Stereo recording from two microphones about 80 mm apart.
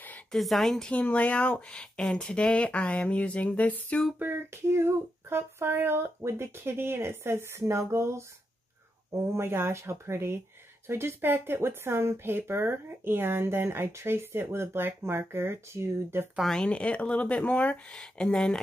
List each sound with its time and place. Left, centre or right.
0.3 s a woman's voice: centre
0.9 s speech: centre
4.2 s a sound: right
10.9 s speech: right
16.3 s speech: centre